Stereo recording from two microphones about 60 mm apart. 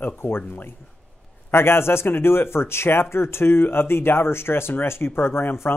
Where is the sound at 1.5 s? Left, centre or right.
Left.